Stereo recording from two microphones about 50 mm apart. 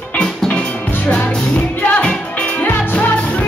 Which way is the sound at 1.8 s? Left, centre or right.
Left.